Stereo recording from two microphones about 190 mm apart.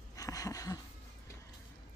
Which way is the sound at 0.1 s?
20° left (ahead or behind).